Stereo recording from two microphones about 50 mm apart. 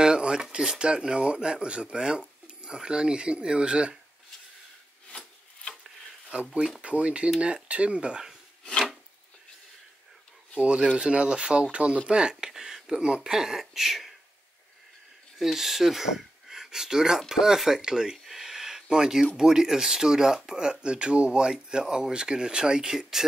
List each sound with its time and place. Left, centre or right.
0.0 s speech: centre
5.1 s rub: centre
5.9 s wood: right
6.8 s speech: right
10.6 s speech: right; by 14.1 s centre
15.3 s speech: centre